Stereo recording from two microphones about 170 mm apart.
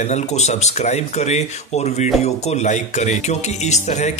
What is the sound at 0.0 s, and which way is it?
Speech, 40° left (ahead or behind).